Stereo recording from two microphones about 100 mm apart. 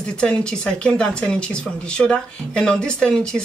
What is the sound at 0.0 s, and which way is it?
Speech, 10° left (ahead or behind).